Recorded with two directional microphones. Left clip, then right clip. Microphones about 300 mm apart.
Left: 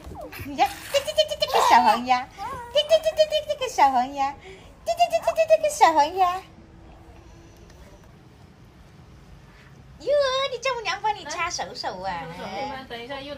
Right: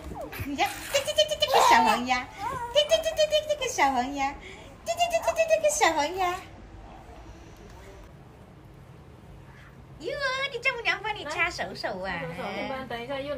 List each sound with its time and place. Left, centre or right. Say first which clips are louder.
0.7 s goat: left 3 dB; centre
1.0 s goat: right 1 dB; centre
1.7 s a sound: left 4 dB; centre
9.9 s a woman's voice: left 8 dB; centre